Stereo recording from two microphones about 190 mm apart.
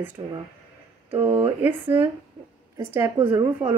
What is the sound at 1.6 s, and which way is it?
Speech, 10° right (ahead or behind).